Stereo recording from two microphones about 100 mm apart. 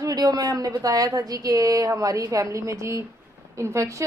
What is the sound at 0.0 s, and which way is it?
A woman's voice, 40° right (ahead or behind).